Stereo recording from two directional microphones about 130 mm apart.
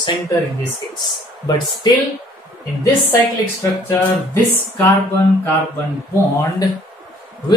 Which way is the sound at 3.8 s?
20° left (ahead or behind).